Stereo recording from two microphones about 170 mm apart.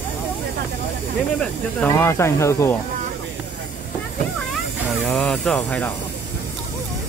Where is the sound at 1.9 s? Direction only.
15° left (ahead or behind).